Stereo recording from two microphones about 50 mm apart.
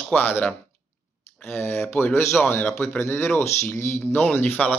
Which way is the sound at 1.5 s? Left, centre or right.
Left.